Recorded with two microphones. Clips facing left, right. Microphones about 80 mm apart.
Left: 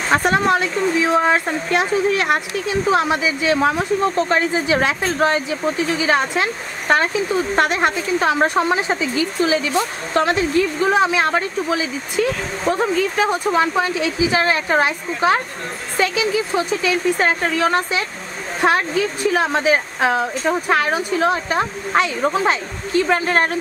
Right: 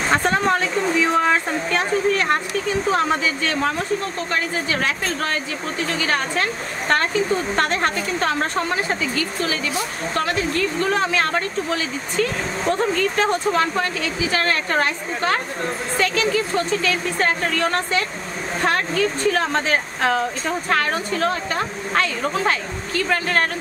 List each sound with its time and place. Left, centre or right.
0.1 s speech: centre